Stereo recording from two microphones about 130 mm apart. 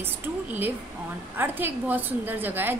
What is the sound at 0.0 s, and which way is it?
A woman's voice, 15° right (ahead or behind).